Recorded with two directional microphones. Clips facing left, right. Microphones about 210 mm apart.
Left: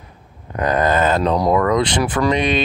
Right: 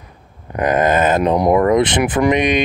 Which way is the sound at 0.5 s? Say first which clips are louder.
Right 2 dB; 20° right (ahead or behind).